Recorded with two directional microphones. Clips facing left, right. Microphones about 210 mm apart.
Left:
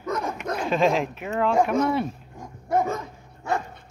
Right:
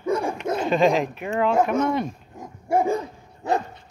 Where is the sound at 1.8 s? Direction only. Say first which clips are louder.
Even; 5° left (ahead or behind).